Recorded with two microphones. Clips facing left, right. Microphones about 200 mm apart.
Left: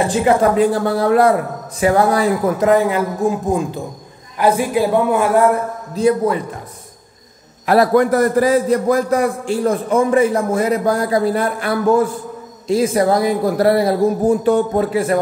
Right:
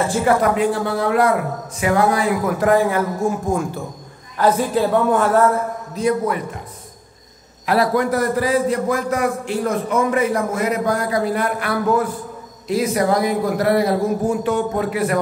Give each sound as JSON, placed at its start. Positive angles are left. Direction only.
{"t": 0.0, "sound": "speech", "side_deg": 20}
{"t": 0.6, "sound": "a man's voice", "side_deg": 40}
{"t": 2.6, "sound": "a man's voice", "side_deg": 20}
{"t": 5.9, "sound": "speech", "side_deg": 30}
{"t": 7.6, "sound": "a man's voice", "side_deg": 45}